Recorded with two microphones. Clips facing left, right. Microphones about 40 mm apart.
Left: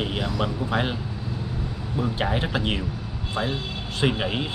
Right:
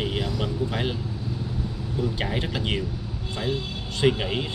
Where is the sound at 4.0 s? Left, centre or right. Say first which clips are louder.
Right 1 dB; centre.